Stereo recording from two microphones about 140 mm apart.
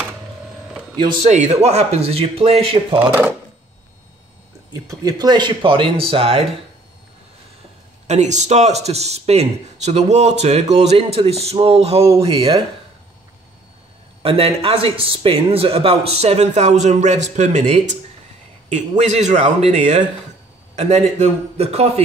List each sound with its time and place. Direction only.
1.2 s speech: 55° right (ahead or behind)
3.0 s speech: 15° right (ahead or behind)
4.7 s speech: 25° right (ahead or behind); by 6.4 s 45° right (ahead or behind)
8.1 s speech: 55° right (ahead or behind); by 12.6 s 35° right (ahead or behind)
14.2 s a man's voice: 40° right (ahead or behind); by 19.4 s 60° right (ahead or behind)
19.4 s speech: 45° right (ahead or behind)